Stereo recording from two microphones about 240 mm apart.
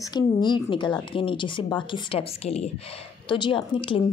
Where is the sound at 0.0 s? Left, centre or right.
Centre.